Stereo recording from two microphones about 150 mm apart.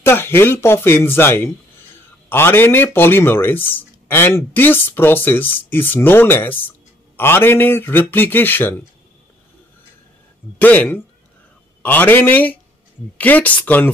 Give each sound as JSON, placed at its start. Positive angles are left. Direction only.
{"t": 0.0, "sound": "speech", "side_deg": 15}
{"t": 10.6, "sound": "speech", "side_deg": 10}